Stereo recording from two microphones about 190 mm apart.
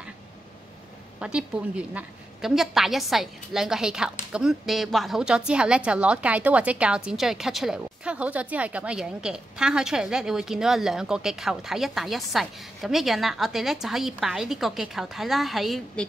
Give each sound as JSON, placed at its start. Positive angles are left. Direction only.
{"t": 1.2, "sound": "a woman's voice", "side_deg": -5}